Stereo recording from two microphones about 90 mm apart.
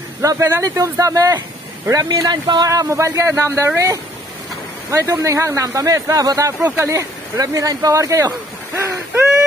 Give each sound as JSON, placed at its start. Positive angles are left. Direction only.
{"t": 0.2, "sound": "speech", "side_deg": -35}
{"t": 4.9, "sound": "speech", "side_deg": -40}